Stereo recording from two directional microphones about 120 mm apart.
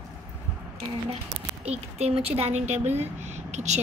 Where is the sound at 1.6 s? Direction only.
60° right (ahead or behind).